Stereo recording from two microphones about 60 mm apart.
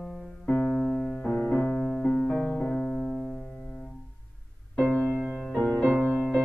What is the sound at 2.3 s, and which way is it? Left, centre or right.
Piano, centre.